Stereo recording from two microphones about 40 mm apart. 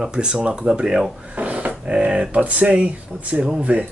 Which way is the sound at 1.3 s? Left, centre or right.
Right.